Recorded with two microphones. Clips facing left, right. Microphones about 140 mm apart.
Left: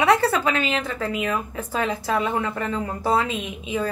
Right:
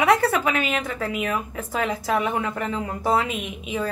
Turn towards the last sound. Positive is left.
turn(degrees=25)  # may be behind; listen again after turning